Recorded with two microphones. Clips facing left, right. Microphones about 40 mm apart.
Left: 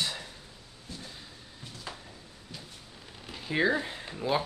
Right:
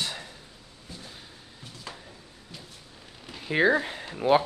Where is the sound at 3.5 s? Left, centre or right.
Centre.